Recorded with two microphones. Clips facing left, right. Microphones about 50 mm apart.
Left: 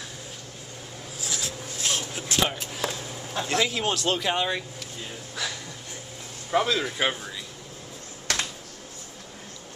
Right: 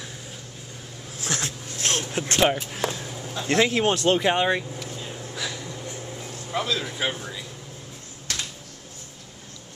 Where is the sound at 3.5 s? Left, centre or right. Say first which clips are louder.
Right 5 dB; right.